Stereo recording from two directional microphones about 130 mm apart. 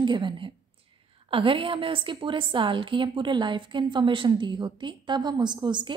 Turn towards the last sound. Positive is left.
turn(degrees=-35)  # may be behind; listen again after turning